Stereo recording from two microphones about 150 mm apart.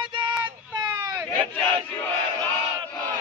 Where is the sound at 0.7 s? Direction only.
25° right (ahead or behind).